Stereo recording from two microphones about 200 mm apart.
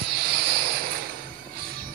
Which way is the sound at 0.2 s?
50° right (ahead or behind).